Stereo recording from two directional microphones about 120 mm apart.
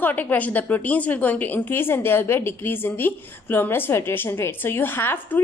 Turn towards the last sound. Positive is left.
turn(degrees=15)  # may be behind; listen again after turning